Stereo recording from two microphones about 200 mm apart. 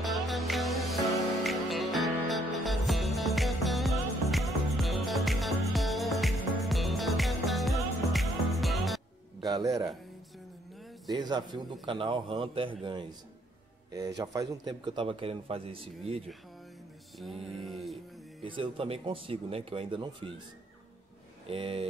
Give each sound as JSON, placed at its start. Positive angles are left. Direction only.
{"t": 0.0, "sound": "music", "side_deg": 0}
{"t": 9.4, "sound": "a sound", "side_deg": -20}
{"t": 11.1, "sound": "a man's voice", "side_deg": -20}
{"t": 13.9, "sound": "a man's voice", "side_deg": -20}
{"t": 17.5, "sound": "music", "side_deg": 0}
{"t": 18.4, "sound": "a man's voice", "side_deg": -25}
{"t": 21.5, "sound": "a man's voice", "side_deg": -30}